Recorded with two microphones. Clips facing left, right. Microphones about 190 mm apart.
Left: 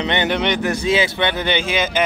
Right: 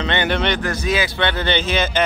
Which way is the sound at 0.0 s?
15° left (ahead or behind).